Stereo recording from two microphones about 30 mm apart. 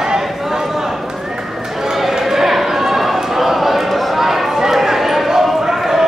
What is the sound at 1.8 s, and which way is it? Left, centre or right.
Run, centre.